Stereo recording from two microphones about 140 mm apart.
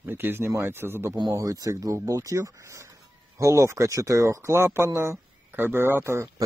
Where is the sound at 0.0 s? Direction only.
15° right (ahead or behind).